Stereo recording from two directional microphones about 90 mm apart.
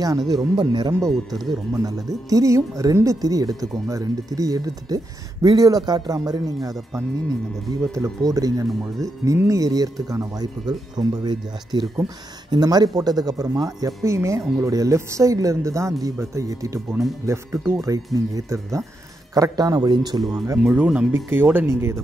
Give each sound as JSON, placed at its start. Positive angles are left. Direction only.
{"t": 0.0, "sound": "speech", "side_deg": -45}
{"t": 0.9, "sound": "speech", "side_deg": -40}
{"t": 8.2, "sound": "speech", "side_deg": -45}
{"t": 20.6, "sound": "speech", "side_deg": -15}